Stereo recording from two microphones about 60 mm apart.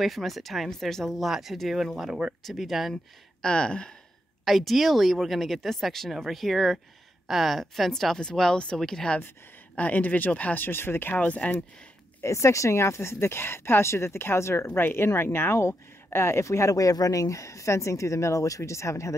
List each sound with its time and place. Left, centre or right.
0.0 s speech: centre
3.4 s speech: centre
4.5 s speech: centre
9.8 s speech: left
11.1 s speech: left
12.2 s speech: left
14.7 s speech: left